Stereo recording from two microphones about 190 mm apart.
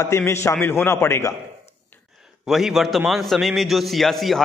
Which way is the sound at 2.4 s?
Centre (ahead or behind).